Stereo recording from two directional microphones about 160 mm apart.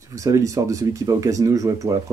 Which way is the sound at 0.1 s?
20° right (ahead or behind).